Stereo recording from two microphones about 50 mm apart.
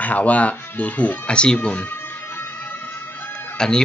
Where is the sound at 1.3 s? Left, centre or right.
Centre.